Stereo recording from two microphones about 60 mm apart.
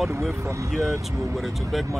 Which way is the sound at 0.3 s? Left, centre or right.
Right.